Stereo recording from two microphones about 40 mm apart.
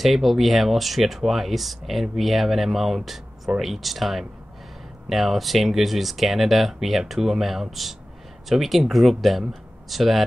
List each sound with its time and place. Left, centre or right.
0.0 s speech: centre